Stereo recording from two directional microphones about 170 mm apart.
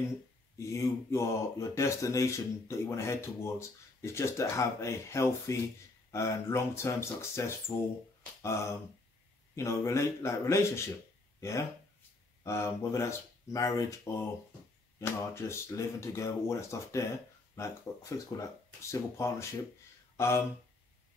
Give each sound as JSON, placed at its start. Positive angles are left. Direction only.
{"t": 0.6, "sound": "speech", "side_deg": 15}
{"t": 12.4, "sound": "speech", "side_deg": 15}